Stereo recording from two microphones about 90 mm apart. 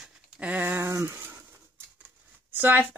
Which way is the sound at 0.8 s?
30° right (ahead or behind).